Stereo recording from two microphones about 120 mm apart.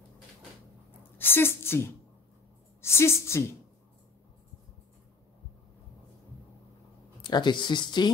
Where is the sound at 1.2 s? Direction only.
20° left (ahead or behind).